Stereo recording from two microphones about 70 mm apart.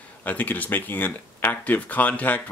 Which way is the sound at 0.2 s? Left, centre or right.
Left.